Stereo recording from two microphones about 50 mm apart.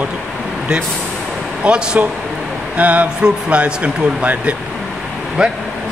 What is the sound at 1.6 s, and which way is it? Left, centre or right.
Speech, right.